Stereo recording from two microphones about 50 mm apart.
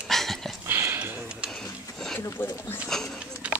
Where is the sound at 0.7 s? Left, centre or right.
Right.